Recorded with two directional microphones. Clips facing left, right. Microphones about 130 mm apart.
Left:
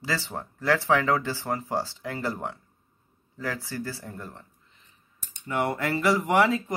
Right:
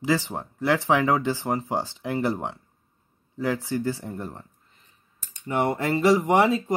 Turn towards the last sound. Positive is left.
turn(degrees=-20)  # may be behind; listen again after turning